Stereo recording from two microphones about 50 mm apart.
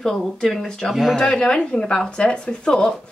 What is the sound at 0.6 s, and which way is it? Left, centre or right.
Speech, centre.